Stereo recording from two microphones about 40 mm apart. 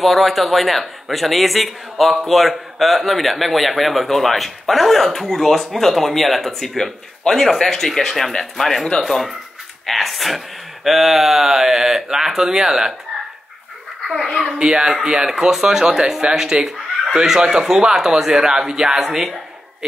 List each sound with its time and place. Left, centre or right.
0.0 s a man's voice: centre
14.6 s speech: right
15.2 s speech: centre
18.9 s a man's voice: centre